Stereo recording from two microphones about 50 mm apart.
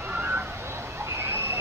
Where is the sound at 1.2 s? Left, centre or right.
Right.